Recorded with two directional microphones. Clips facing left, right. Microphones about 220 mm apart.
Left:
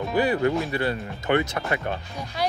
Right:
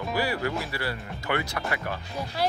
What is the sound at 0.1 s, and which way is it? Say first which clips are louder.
Speech: left 6 dB; 20° left (ahead or behind).